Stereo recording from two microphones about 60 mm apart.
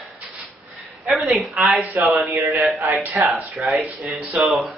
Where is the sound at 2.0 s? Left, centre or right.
Right.